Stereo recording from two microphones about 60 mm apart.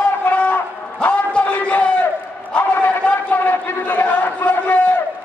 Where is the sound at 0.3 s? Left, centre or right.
Left.